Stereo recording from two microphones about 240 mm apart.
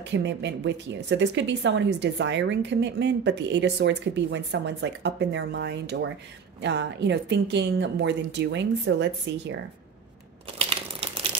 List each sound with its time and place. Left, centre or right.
0.0 s a woman's voice: right
11.0 s typewriter: right